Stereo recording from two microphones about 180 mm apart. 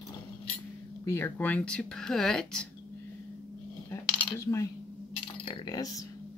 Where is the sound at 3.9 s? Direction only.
15° left (ahead or behind).